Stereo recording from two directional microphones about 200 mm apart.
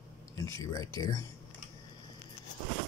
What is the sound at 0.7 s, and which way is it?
Speech, 15° left (ahead or behind).